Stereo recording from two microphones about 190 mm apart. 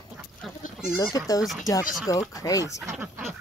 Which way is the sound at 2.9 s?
10° right (ahead or behind).